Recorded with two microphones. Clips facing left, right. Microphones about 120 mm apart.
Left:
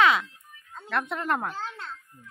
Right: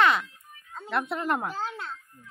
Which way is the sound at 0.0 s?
Centre (ahead or behind).